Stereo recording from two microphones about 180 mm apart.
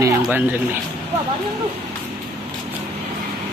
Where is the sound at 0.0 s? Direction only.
10° right (ahead or behind).